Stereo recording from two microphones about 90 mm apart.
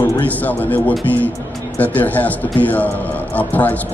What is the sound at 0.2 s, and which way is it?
Speech, 20° left (ahead or behind).